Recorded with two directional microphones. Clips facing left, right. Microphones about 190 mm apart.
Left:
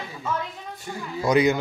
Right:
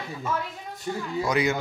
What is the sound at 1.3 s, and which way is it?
Speech, 20° left (ahead or behind).